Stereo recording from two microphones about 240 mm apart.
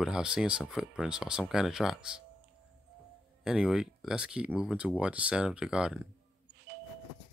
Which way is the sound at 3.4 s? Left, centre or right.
Centre.